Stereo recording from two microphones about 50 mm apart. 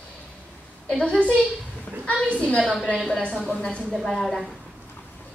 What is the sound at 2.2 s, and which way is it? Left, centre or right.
A woman's voice, left.